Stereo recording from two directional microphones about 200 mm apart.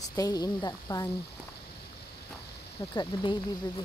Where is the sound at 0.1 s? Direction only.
20° left (ahead or behind).